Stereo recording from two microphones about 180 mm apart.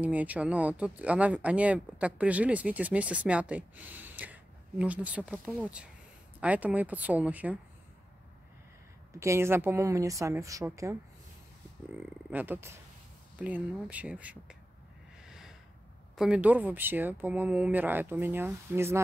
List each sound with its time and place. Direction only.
0.0 s speech: 10° right (ahead or behind)
9.1 s speech: 15° right (ahead or behind)
12.3 s speech: 10° right (ahead or behind)
15.2 s snort: centre (ahead or behind)
16.2 s speech: 5° right (ahead or behind)